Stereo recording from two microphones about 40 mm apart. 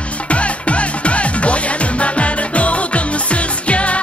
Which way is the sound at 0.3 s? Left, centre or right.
Left.